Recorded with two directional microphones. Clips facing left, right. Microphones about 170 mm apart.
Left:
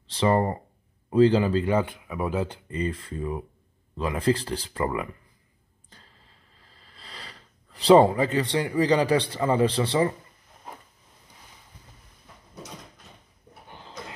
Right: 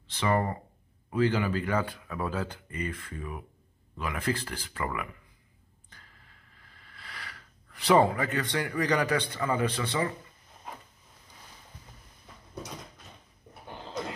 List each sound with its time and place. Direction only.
0.1 s speech: 30° left (ahead or behind)
5.9 s a sound: 30° left (ahead or behind)
6.8 s speech: 30° left (ahead or behind)